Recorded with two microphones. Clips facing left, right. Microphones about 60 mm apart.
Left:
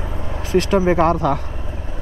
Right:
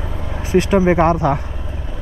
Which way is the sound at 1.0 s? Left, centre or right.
Centre.